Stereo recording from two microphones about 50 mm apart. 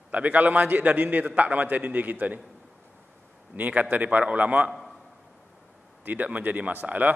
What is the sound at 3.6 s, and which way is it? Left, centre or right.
A man's voice, right.